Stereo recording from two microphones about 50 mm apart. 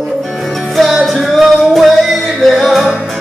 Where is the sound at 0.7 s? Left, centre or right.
Centre.